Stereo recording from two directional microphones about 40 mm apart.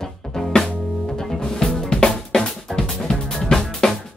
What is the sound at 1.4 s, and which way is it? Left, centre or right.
Drum, left.